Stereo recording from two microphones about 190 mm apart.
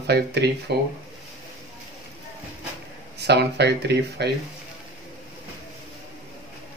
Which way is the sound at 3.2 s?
60° right (ahead or behind).